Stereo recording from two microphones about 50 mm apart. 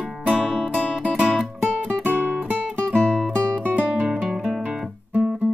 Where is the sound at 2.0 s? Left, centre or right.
Right.